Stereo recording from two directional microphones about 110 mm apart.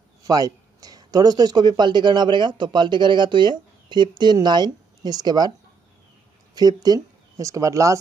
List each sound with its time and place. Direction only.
0.2 s a sound: 35° right (ahead or behind)
0.7 s speech: 35° right (ahead or behind)
6.8 s speech: 30° right (ahead or behind)